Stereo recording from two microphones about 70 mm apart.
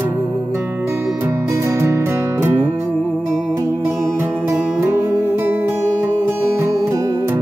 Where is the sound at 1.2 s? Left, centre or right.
Right.